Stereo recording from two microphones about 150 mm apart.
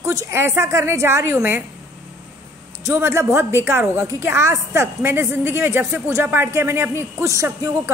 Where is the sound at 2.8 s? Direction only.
15° right (ahead or behind).